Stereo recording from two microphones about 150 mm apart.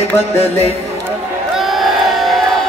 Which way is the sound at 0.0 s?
45° left (ahead or behind).